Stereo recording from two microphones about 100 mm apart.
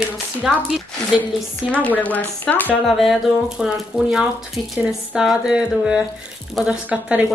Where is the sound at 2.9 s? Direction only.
Centre (ahead or behind).